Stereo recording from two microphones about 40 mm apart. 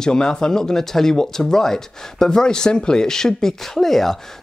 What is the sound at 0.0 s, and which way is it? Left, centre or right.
Speech, centre.